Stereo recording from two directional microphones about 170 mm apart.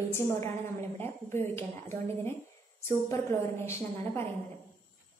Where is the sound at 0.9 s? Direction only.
15° left (ahead or behind).